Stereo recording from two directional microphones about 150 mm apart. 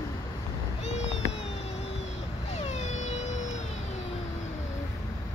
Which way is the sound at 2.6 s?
50° left (ahead or behind).